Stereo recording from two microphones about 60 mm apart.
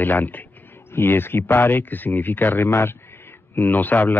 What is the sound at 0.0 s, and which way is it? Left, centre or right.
Speech, left.